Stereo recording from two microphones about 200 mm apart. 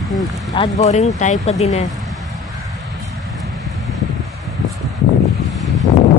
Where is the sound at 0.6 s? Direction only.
35° left (ahead or behind).